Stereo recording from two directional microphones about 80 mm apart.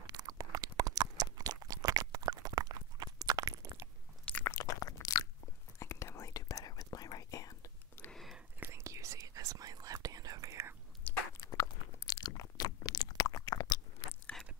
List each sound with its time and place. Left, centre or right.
0.0 s a sound: right
4.5 s a sound: left
5.8 s whispering: left
8.1 s whispering: centre
8.6 s whispering: right
11.1 s biting: centre
11.4 s crunch: left
12.1 s chewing: left